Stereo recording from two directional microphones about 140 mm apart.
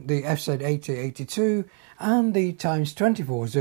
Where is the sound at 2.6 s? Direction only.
15° right (ahead or behind).